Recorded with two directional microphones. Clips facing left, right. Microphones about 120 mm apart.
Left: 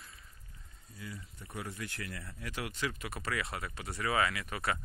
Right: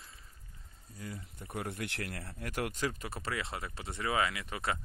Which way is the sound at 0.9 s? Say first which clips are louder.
Right 2 dB; 45° right (ahead or behind).